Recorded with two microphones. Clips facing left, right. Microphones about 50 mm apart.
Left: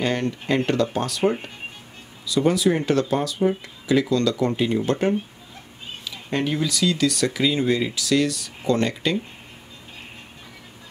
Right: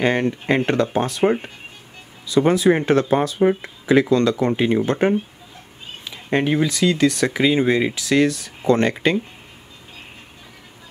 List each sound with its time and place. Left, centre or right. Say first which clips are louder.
0.0 s speech: right 5 dB; right